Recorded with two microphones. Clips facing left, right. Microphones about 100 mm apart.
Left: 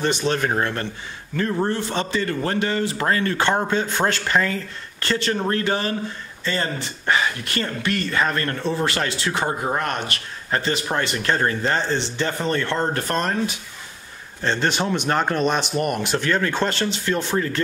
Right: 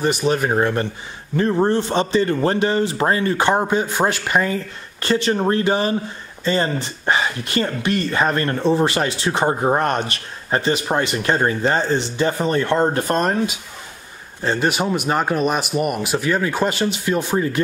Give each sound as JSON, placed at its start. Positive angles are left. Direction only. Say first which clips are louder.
{"t": 0.0, "sound": "speech", "louder": "right 3 dB", "side_deg": -10}